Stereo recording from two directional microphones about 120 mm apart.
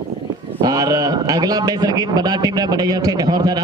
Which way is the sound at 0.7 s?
35° right (ahead or behind).